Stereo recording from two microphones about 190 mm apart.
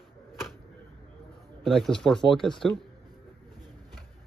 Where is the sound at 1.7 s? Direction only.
Centre (ahead or behind).